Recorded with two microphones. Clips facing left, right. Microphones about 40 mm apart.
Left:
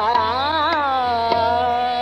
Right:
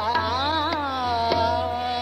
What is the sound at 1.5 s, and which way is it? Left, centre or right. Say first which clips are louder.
Music: left 7 dB; left.